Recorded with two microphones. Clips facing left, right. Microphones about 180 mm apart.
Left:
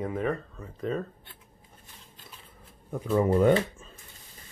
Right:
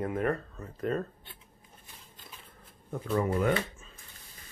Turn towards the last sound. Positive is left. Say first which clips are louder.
# left 6 dB
turn(degrees=30)  # may be behind; listen again after turning